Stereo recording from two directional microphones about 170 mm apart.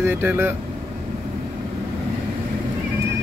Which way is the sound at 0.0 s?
10° right (ahead or behind).